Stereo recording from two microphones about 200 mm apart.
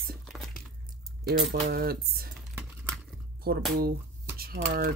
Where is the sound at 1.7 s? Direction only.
50° right (ahead or behind).